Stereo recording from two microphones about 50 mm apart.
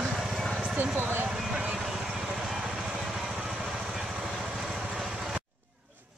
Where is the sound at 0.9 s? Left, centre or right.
Right.